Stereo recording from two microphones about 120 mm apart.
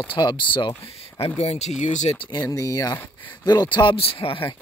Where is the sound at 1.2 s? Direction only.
65° left (ahead or behind).